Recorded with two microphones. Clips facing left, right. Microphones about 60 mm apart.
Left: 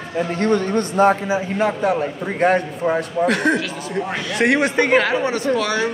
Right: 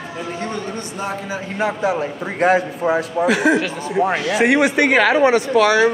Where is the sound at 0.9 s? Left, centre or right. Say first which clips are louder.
Left 13 dB; left.